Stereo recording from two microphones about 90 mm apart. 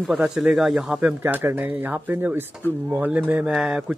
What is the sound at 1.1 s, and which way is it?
Speech, 20° right (ahead or behind).